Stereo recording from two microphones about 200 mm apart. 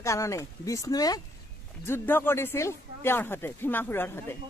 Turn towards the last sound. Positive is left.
turn(degrees=10)  # may be behind; listen again after turning